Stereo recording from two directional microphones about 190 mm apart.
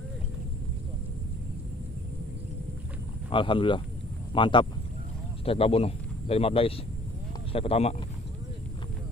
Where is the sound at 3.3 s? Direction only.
25° left (ahead or behind).